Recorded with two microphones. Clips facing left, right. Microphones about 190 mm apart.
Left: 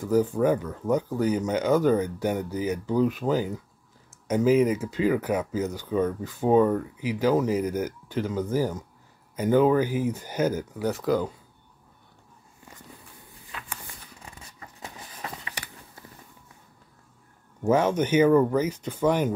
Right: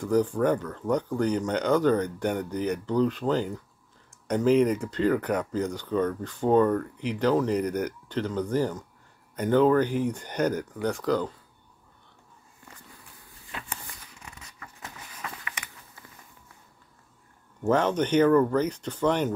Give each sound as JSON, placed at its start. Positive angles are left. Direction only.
{"t": 0.0, "sound": "speech", "side_deg": 5}
{"t": 14.2, "sound": "a sound", "side_deg": 30}
{"t": 17.6, "sound": "speech", "side_deg": 10}